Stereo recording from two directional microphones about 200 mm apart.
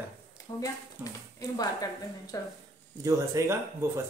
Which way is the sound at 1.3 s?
20° left (ahead or behind).